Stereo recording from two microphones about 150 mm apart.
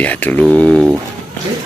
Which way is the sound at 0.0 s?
10° left (ahead or behind).